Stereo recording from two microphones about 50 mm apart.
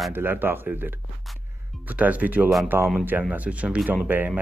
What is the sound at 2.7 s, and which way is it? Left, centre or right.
Speech, right.